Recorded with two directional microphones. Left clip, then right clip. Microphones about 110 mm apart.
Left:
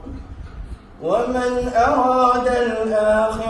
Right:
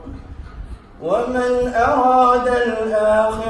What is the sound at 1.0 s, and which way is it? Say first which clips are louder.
Mantra: right 1 dB; 25° right (ahead or behind).